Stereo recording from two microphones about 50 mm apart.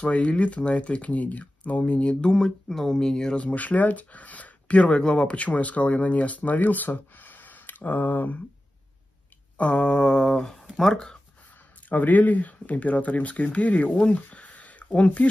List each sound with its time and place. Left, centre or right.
0.0 s speech: left
2.2 s speech: centre
3.3 s speech: left
9.6 s speech: left
11.9 s speech: left